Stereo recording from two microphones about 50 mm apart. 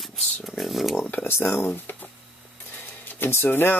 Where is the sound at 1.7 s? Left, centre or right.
Left.